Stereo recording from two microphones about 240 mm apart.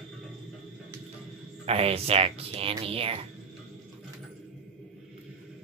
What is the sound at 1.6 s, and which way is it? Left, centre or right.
Speech, right.